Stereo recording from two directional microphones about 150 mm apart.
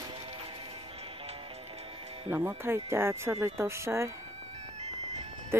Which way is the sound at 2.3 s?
15° right (ahead or behind).